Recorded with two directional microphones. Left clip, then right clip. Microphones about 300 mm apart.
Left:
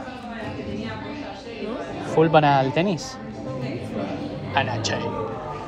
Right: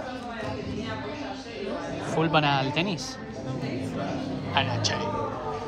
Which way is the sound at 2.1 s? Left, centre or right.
Centre.